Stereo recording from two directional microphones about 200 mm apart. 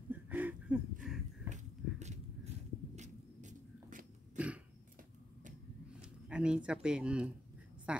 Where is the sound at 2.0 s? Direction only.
35° right (ahead or behind).